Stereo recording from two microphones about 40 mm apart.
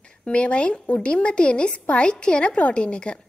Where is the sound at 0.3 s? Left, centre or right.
Left.